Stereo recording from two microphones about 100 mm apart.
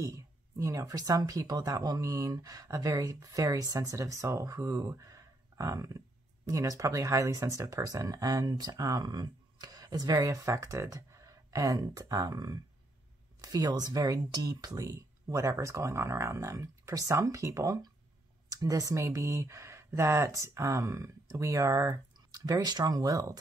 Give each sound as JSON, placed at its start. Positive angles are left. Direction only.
{"t": 0.0, "sound": "speech", "side_deg": -30}